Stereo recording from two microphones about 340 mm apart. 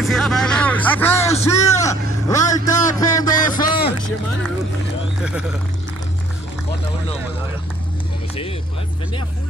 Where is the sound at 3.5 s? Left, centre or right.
Left.